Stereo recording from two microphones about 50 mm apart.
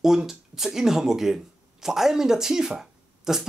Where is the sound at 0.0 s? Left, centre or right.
Centre.